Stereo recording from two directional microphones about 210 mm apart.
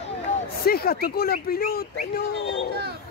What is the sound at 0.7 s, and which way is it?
Speech, 45° left (ahead or behind).